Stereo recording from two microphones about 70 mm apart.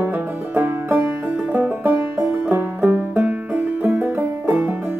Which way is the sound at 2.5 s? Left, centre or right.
Right.